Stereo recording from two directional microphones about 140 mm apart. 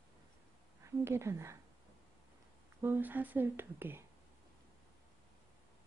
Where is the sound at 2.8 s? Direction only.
15° right (ahead or behind).